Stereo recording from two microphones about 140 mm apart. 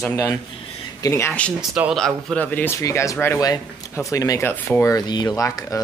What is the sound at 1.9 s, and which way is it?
Speech, 5° left (ahead or behind).